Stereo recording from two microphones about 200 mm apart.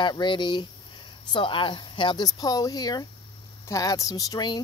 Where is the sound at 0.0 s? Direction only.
25° left (ahead or behind).